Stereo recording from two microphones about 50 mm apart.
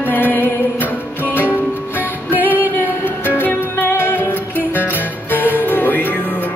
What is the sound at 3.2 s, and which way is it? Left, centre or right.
Music, left.